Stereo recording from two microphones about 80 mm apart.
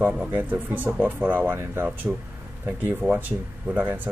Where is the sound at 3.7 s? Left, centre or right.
Right.